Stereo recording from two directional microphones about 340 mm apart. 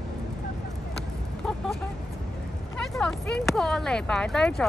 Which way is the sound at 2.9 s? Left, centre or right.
Centre.